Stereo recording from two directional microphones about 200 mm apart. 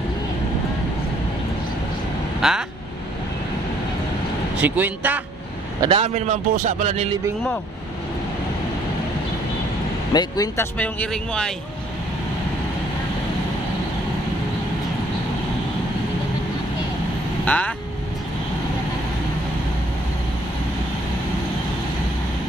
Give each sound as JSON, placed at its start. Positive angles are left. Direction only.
{"t": 2.4, "sound": "speech", "side_deg": 0}
{"t": 4.6, "sound": "speech", "side_deg": -10}
{"t": 5.8, "sound": "speech", "side_deg": -25}
{"t": 10.1, "sound": "speech", "side_deg": 20}
{"t": 17.5, "sound": "speech", "side_deg": 5}